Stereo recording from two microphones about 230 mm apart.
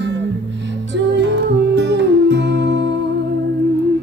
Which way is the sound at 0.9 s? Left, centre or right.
Right.